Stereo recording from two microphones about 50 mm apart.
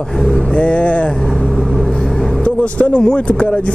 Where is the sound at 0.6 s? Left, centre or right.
Left.